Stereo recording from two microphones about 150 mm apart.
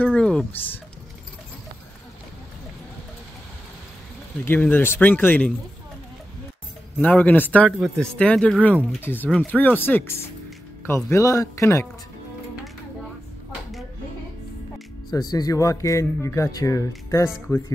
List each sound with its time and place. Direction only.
0.0 s a sound: 5° left (ahead or behind)
4.5 s speech: 10° left (ahead or behind)
7.0 s speech: 10° left (ahead or behind)
15.3 s speech: 25° left (ahead or behind)